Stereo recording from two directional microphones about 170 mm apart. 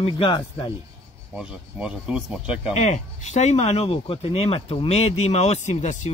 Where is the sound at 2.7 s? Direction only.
40° left (ahead or behind).